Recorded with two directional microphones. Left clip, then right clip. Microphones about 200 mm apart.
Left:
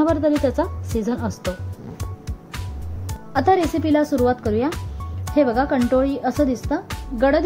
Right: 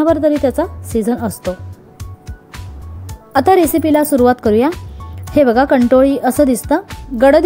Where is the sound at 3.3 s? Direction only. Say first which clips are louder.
Right 7 dB; 35° right (ahead or behind).